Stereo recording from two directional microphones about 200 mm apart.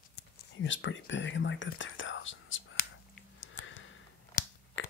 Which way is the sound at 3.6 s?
75° left (ahead or behind).